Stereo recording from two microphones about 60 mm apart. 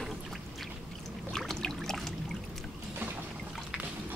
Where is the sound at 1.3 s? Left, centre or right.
Centre.